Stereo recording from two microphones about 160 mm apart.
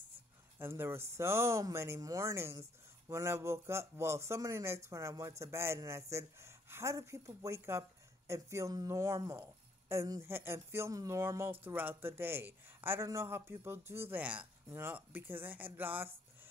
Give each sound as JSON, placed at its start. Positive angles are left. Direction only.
{"t": 0.6, "sound": "a man's voice", "side_deg": -15}